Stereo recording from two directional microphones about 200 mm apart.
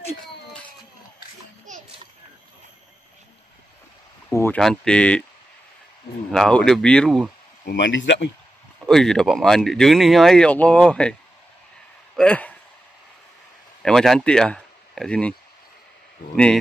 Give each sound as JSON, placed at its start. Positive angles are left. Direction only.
{"t": 0.2, "sound": "baby cry", "side_deg": 5}
{"t": 4.3, "sound": "a sound", "side_deg": 15}
{"t": 4.6, "sound": "speech", "side_deg": 5}
{"t": 6.3, "sound": "speech", "side_deg": 0}
{"t": 7.6, "sound": "speech", "side_deg": 65}
{"t": 8.8, "sound": "speech", "side_deg": 0}
{"t": 12.2, "sound": "a man's voice", "side_deg": 5}
{"t": 13.8, "sound": "speech", "side_deg": 0}